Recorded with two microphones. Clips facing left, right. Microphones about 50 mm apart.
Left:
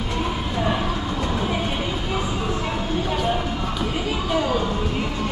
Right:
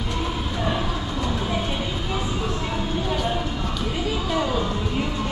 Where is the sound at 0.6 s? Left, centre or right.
Centre.